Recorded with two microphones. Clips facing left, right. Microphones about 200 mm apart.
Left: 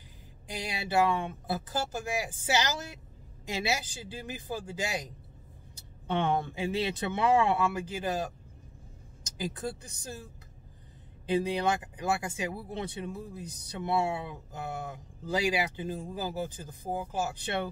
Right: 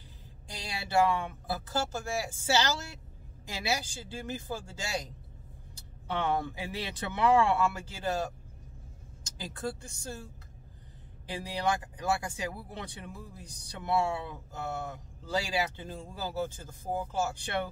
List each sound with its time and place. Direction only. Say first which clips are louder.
0.5 s speech: left 2 dB; 20° left (ahead or behind)
6.0 s speech: left 2 dB; 20° left (ahead or behind)
11.2 s speech: left 4 dB; 20° left (ahead or behind)